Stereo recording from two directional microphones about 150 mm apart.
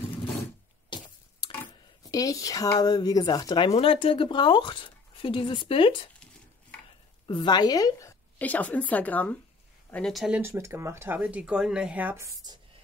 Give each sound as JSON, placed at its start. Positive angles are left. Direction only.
{"t": 0.8, "sound": "a sound", "side_deg": 30}
{"t": 2.0, "sound": "speech", "side_deg": 20}
{"t": 7.2, "sound": "a woman's voice", "side_deg": 30}
{"t": 8.4, "sound": "a woman's voice", "side_deg": 10}
{"t": 10.4, "sound": "speech", "side_deg": -15}